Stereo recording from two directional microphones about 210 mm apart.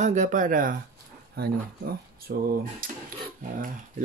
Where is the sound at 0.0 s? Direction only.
35° right (ahead or behind).